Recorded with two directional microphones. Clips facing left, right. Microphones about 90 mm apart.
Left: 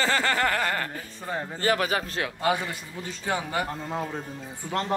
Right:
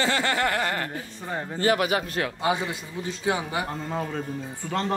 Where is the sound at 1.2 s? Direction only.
Centre (ahead or behind).